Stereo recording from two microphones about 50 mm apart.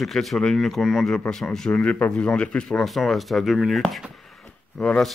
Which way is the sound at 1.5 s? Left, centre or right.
Centre.